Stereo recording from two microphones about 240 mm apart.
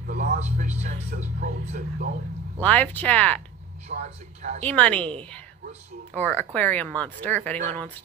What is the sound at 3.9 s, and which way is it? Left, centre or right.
Speech, right.